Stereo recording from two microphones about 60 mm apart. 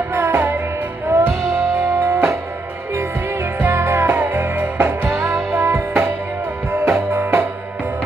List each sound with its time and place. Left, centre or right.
0.1 s music: right
2.0 s music: right
3.5 s music: right
5.5 s music: right